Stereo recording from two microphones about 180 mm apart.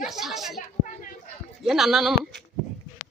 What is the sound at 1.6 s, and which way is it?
Speech, centre (ahead or behind).